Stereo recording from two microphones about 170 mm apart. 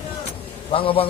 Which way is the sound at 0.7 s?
30° left (ahead or behind).